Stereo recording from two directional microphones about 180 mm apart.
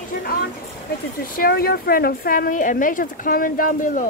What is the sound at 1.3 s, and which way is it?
A woman's voice, 55° left (ahead or behind).